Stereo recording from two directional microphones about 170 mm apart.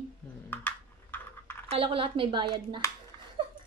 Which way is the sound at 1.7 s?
35° right (ahead or behind).